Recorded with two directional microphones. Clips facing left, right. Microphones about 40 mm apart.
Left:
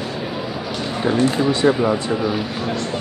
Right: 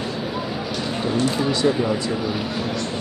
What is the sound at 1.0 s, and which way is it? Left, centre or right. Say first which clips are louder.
Speech: left 5 dB; left.